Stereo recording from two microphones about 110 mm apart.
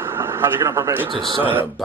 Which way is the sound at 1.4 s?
15° right (ahead or behind).